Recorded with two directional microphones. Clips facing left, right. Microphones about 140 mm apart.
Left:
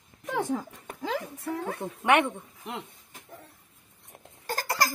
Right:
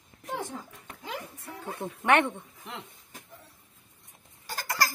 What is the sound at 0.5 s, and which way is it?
Speech, 90° left.